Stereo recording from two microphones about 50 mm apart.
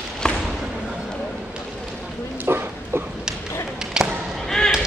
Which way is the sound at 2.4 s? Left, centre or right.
Right.